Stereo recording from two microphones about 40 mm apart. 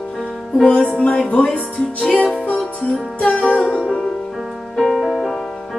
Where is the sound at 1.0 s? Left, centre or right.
Left.